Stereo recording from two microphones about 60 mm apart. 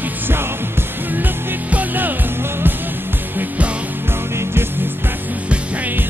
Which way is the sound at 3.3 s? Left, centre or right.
Right.